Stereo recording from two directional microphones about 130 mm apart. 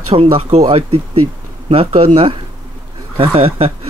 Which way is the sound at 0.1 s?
50° right (ahead or behind).